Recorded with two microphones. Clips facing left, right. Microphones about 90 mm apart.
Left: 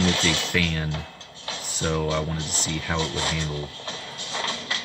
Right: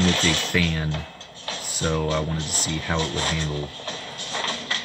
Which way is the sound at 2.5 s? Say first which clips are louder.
Right 1 dB; 5° right (ahead or behind).